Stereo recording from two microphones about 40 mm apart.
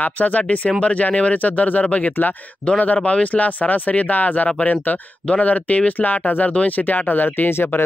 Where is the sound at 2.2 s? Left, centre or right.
Left.